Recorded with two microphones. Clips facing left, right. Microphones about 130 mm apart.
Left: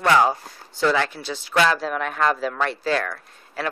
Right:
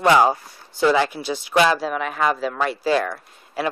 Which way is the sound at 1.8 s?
5° right (ahead or behind).